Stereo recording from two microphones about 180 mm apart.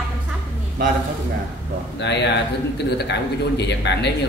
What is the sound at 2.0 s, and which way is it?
Speech, 70° left (ahead or behind).